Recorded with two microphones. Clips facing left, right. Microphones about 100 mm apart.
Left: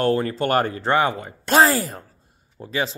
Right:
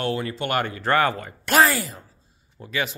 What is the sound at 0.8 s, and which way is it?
Speech, 20° left (ahead or behind).